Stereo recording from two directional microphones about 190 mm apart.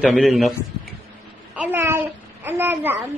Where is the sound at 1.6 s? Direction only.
10° right (ahead or behind).